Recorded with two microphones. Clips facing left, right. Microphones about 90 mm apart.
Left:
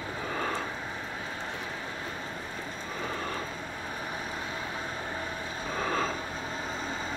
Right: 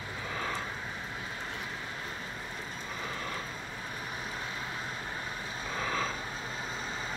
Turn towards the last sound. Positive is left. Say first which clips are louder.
# left 4 dB
turn(degrees=45)  # may be behind; listen again after turning